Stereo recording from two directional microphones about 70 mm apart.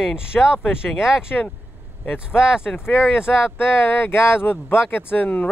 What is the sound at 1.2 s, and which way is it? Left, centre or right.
Speech, left.